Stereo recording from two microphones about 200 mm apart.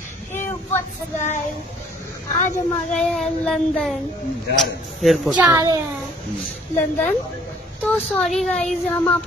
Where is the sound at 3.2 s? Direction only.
Centre (ahead or behind).